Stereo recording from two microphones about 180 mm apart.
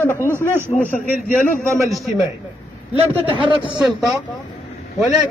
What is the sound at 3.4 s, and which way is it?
Speech, 25° right (ahead or behind).